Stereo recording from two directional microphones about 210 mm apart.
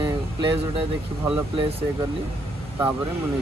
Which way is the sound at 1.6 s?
30° right (ahead or behind).